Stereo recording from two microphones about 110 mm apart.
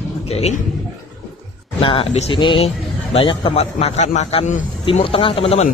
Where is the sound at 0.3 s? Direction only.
75° left (ahead or behind).